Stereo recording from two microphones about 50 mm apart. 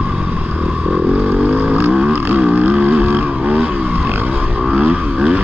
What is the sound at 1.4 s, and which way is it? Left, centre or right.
Vehicle, right.